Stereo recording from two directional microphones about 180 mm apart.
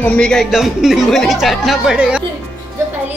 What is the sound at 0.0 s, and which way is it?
Speech, 5° left (ahead or behind).